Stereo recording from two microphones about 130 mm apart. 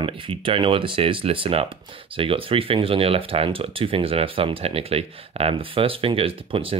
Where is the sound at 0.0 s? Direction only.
45° right (ahead or behind).